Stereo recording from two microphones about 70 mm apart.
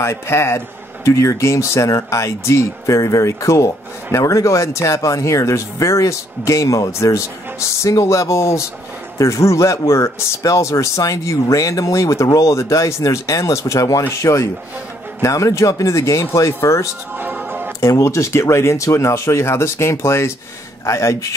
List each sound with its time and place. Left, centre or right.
0.0 s a man's voice: left
14.1 s speech: left
17.2 s music: right
17.7 s speech: left